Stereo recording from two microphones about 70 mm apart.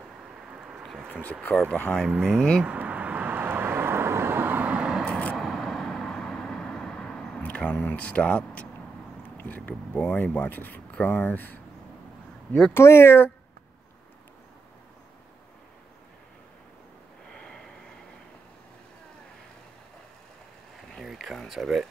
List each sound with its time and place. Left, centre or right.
0.5 s a sound: centre
1.5 s speech: centre
2.6 s vehicle: right
4.7 s vehicle: centre
5.4 s vehicle: centre
7.4 s speech: centre
12.7 s speech: left
17.3 s snort: centre
21.0 s a sound: centre